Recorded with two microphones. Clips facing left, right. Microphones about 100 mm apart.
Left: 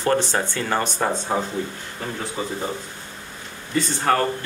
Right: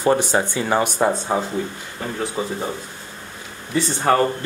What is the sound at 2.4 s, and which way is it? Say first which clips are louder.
Speech: right 2 dB; 15° right (ahead or behind).